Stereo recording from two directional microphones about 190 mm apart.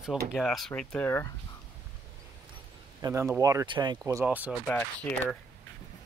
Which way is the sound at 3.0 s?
15° right (ahead or behind).